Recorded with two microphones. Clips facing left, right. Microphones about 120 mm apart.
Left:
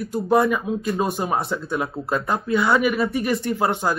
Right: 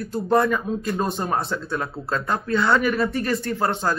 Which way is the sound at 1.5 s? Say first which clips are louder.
Left 2 dB; 15° left (ahead or behind).